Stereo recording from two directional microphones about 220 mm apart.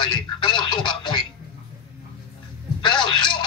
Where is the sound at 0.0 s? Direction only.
20° left (ahead or behind).